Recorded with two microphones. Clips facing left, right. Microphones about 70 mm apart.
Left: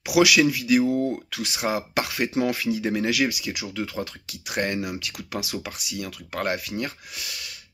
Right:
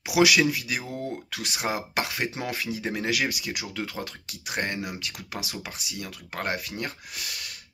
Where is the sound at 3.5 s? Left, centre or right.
Right.